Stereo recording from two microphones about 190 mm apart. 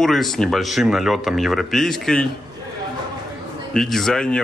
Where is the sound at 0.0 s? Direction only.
Centre (ahead or behind).